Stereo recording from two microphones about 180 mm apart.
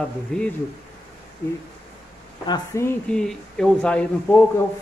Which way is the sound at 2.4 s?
20° left (ahead or behind).